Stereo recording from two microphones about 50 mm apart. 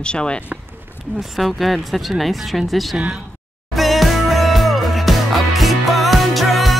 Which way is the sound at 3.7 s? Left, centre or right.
Centre.